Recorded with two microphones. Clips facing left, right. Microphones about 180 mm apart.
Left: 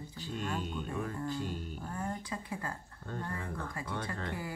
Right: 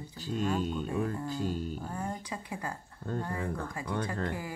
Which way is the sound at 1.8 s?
15° right (ahead or behind).